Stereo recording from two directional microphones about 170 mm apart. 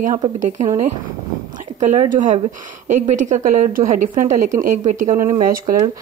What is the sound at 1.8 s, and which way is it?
A woman's voice, 45° right (ahead or behind).